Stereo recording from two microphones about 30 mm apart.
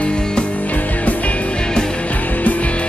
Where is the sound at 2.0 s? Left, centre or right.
Left.